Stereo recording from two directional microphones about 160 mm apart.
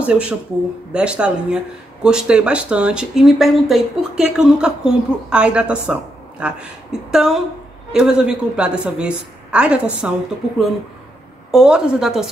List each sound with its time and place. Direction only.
0.0 s speech: 5° right (ahead or behind)
11.5 s speech: 5° right (ahead or behind)